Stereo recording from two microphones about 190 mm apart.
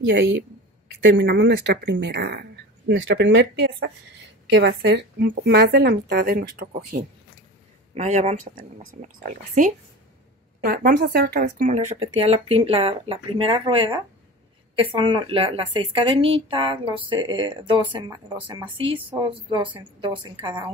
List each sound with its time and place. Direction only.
0.1 s speech: 65° right (ahead or behind)
2.9 s speech: 70° right (ahead or behind); by 7.1 s 50° right (ahead or behind)
7.9 s a woman's voice: 35° right (ahead or behind)